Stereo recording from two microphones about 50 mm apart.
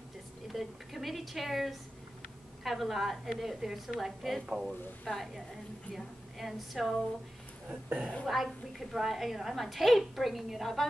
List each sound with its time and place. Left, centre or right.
0.5 s a woman's voice: centre
7.6 s speech: right
8.3 s a woman's voice: centre